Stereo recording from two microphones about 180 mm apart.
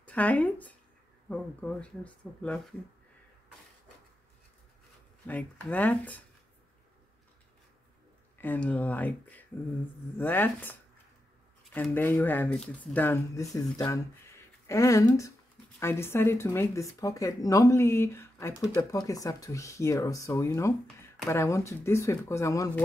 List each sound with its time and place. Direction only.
0.0 s speech: 10° left (ahead or behind)
5.2 s speech: 10° left (ahead or behind)
8.4 s speech: 10° left (ahead or behind)